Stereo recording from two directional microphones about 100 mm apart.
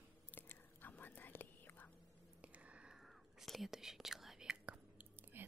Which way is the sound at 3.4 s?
Centre (ahead or behind).